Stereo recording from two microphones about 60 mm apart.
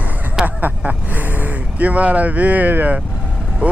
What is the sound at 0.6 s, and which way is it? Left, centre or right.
Speech, right.